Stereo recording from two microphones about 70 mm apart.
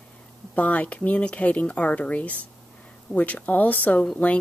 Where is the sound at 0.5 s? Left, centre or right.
Left.